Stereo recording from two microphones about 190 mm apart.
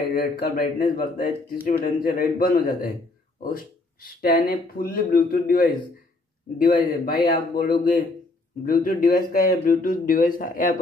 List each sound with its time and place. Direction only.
0.1 s speech: 50° left (ahead or behind)
4.2 s speech: 50° left (ahead or behind)